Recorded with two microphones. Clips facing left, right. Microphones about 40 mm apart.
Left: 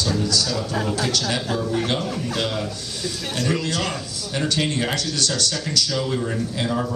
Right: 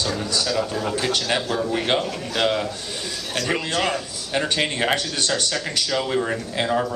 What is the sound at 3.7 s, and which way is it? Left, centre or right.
A man's voice, right.